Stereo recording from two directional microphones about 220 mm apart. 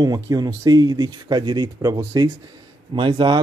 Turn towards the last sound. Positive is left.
turn(degrees=-20)  # may be behind; listen again after turning